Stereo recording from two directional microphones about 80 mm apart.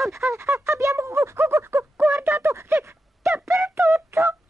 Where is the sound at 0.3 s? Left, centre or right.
Right.